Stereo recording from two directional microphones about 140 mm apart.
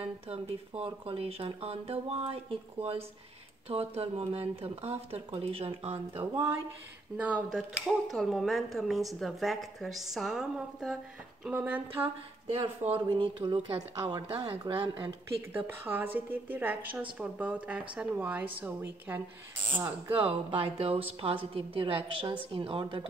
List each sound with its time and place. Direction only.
0.0 s speech: 45° right (ahead or behind)
7.2 s speech: 10° right (ahead or behind)
11.4 s a woman's voice: 10° right (ahead or behind)
12.4 s a woman's voice: 45° right (ahead or behind)
15.5 s a woman's voice: 15° right (ahead or behind)
20.2 s a woman's voice: 40° right (ahead or behind)